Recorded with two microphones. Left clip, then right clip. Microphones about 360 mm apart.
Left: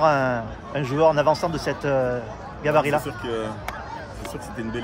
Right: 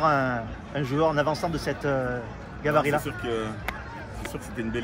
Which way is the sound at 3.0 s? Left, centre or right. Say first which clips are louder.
Left 2 dB; centre.